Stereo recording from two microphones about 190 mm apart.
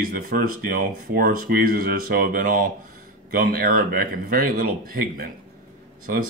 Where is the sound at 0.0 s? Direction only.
50° right (ahead or behind).